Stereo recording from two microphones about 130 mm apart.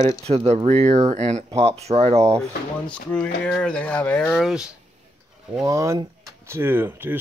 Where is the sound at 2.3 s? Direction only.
10° left (ahead or behind).